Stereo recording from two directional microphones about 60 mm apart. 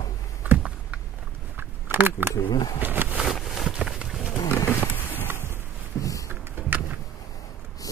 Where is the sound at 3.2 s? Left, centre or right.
Centre.